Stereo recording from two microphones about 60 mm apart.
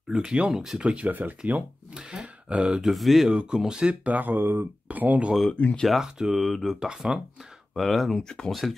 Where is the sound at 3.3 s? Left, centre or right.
Centre.